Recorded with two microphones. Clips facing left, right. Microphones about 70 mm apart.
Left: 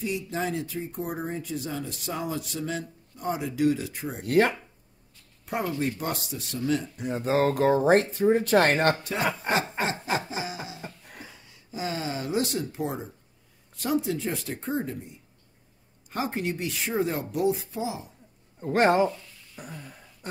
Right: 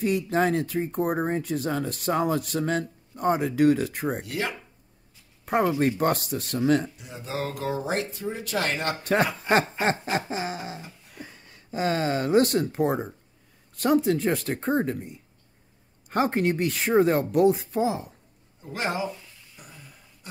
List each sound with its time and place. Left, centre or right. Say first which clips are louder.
0.0 s speech: right 6 dB; right
4.3 s speech: left 8 dB; left
5.4 s a sound: right 7 dB; right
5.8 s speech: right 6 dB; right
7.0 s speech: left 8 dB; left
9.0 s speech: right 4 dB; right
10.2 s a sound: right 3 dB; right
11.1 s speech: right 2 dB; right
18.6 s speech: left 8 dB; left
19.5 s a sound: left 8 dB; left